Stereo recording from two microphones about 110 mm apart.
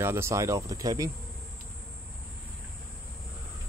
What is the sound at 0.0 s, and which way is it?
Speech, 25° right (ahead or behind).